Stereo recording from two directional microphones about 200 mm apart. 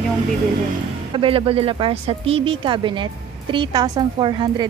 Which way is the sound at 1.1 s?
25° right (ahead or behind).